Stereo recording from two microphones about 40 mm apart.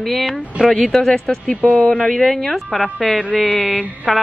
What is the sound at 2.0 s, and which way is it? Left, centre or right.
Speech, centre.